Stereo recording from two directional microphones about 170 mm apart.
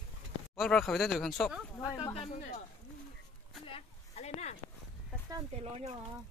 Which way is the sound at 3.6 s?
35° left (ahead or behind).